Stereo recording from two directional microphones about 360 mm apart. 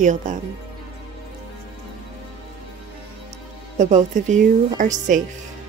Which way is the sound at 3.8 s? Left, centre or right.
Centre.